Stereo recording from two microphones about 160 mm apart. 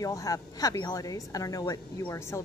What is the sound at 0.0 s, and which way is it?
A woman's voice, 20° left (ahead or behind).